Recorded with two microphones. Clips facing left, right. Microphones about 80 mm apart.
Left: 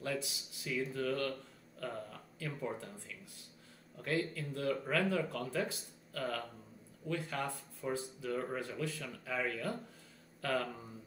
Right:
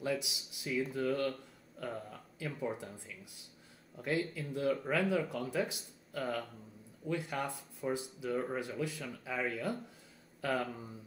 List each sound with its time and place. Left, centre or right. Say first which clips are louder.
0.0 s speech: right 3 dB; centre
3.9 s speech: right 1 dB; centre